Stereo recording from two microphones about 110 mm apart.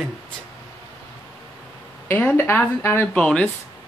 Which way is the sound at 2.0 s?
15° left (ahead or behind).